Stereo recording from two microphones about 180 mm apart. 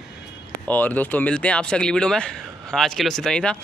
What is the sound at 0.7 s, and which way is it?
A man's voice, 10° left (ahead or behind).